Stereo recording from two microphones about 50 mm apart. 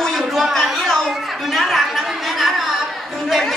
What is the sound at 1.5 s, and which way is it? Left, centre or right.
Chatter, centre.